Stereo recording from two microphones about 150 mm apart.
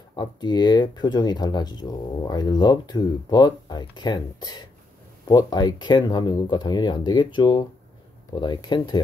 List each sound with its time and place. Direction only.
0.1 s speech: 30° left (ahead or behind)